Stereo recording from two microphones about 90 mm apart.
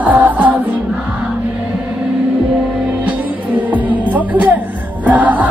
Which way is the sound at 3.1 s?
15° right (ahead or behind).